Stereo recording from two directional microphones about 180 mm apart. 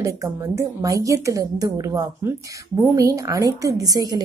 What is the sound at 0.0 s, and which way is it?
Speech, 15° right (ahead or behind).